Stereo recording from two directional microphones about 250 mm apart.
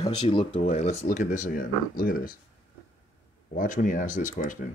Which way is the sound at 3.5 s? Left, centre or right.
Left.